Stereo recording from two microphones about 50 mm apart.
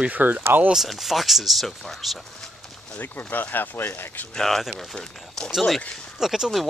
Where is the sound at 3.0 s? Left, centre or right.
Left.